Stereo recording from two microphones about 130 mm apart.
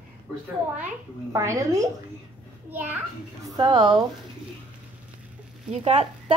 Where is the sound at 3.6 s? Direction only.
35° right (ahead or behind).